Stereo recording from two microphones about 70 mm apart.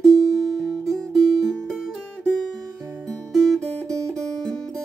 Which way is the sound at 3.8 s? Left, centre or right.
Centre.